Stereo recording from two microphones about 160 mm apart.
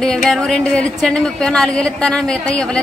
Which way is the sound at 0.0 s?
5° left (ahead or behind).